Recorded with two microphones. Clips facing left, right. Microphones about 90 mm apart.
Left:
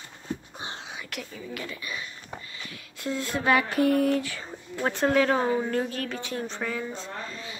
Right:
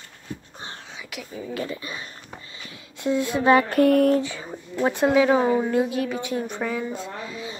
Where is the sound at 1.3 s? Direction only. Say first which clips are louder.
Right 11 dB; 30° right (ahead or behind).